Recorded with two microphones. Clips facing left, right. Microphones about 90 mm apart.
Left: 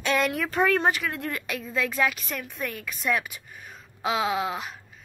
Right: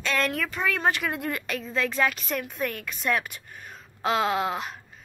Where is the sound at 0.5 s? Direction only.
40° left (ahead or behind).